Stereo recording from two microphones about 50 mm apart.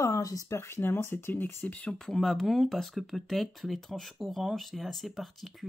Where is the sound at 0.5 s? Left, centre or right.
Left.